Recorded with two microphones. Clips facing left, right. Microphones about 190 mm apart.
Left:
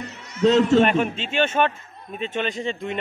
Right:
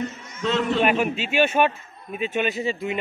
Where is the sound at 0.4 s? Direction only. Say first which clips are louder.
Left 7 dB; 40° left (ahead or behind).